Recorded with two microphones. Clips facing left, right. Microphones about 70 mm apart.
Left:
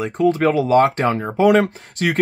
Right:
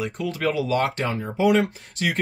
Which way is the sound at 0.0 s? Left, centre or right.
Left.